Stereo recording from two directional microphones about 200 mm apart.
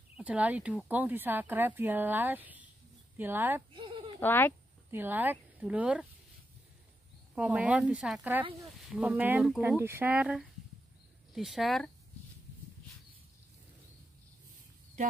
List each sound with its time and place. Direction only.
0.2 s speech: 5° right (ahead or behind)
3.7 s a sound: 25° right (ahead or behind)
4.2 s speech: 10° left (ahead or behind)
4.9 s speech: 10° right (ahead or behind)
7.3 s speech: 5° right (ahead or behind)